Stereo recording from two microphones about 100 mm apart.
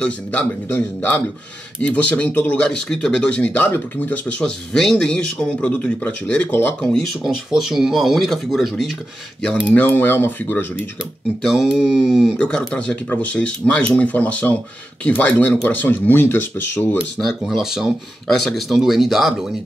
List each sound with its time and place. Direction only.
0.0 s speech: 20° left (ahead or behind)
2.6 s speech: 10° left (ahead or behind)
7.2 s speech: 5° right (ahead or behind)
9.7 s speech: 20° left (ahead or behind)
11.4 s speech: centre (ahead or behind)
12.0 s speech: 5° left (ahead or behind)
17.2 s speech: centre (ahead or behind)